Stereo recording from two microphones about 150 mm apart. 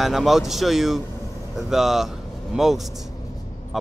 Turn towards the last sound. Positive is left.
turn(degrees=0)  # may be behind; listen again after turning